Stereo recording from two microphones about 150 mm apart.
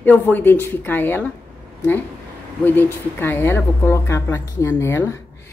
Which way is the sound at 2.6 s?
15° left (ahead or behind).